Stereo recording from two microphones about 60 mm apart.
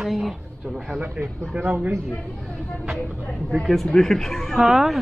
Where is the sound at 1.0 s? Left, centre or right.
Right.